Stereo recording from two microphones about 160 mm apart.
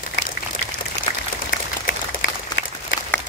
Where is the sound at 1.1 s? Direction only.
30° left (ahead or behind).